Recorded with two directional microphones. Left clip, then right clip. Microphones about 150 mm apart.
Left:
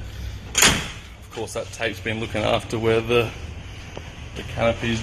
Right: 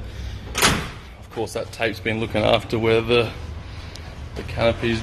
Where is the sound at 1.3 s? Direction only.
20° right (ahead or behind); by 3.3 s 5° right (ahead or behind).